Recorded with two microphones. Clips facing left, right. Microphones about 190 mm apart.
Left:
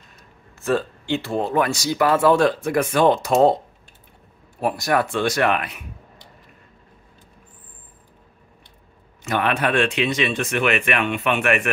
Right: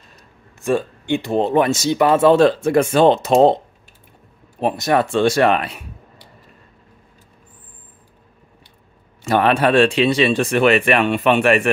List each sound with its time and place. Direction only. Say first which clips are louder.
0.7 s speech: right 3 dB; 15° right (ahead or behind); by 5.9 s 30° right (ahead or behind)
9.2 s speech: right 6 dB; 30° right (ahead or behind)